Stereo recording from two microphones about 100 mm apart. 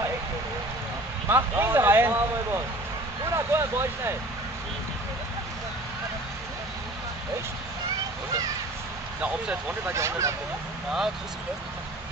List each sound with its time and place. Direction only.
1.3 s speech: 25° right (ahead or behind)
9.2 s speech: 15° right (ahead or behind)
9.9 s speech: 30° right (ahead or behind)